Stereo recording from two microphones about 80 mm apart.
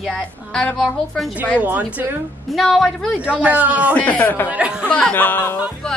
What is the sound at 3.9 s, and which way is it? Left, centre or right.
Speech, centre.